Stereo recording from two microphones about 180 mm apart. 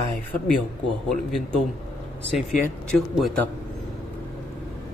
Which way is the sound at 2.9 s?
5° left (ahead or behind).